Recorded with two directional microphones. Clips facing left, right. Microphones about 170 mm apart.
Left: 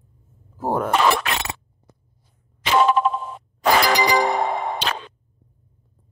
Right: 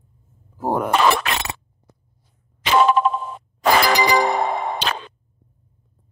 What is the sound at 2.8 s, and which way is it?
Telephone dialing, 80° right.